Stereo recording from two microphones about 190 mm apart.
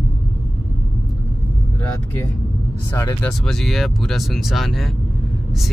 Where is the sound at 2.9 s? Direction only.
15° left (ahead or behind).